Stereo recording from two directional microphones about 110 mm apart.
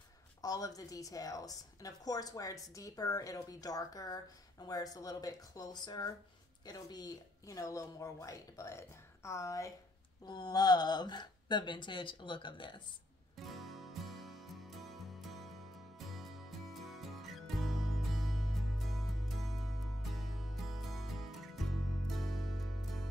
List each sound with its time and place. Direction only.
0.4 s a woman's voice: 35° left (ahead or behind)
13.5 s music: centre (ahead or behind)